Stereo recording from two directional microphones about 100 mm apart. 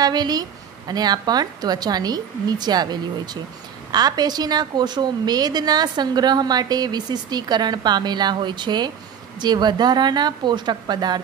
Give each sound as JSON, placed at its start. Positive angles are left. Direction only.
{"t": 0.0, "sound": "a woman's voice", "side_deg": -45}